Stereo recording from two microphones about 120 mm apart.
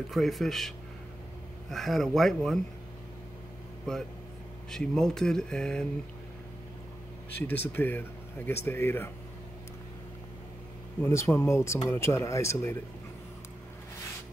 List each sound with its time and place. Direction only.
0.1 s speech: centre (ahead or behind)
3.9 s speech: 5° left (ahead or behind)
7.3 s speech: 15° left (ahead or behind)
11.0 s speech: 20° left (ahead or behind)